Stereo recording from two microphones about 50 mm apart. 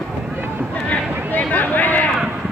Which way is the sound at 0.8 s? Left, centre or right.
Left.